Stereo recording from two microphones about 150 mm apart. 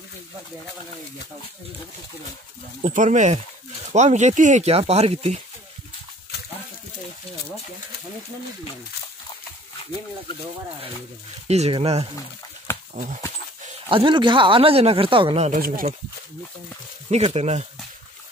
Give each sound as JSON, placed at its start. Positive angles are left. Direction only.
{"t": 2.8, "sound": "speech", "side_deg": -55}
{"t": 11.4, "sound": "speech", "side_deg": -45}
{"t": 13.8, "sound": "speech", "side_deg": -35}
{"t": 15.5, "sound": "speech", "side_deg": -70}
{"t": 17.1, "sound": "speech", "side_deg": -45}